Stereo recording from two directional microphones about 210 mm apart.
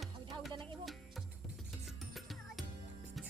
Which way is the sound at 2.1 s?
Centre (ahead or behind).